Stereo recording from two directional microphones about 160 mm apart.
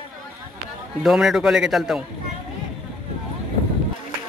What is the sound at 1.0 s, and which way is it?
A man's voice, centre (ahead or behind).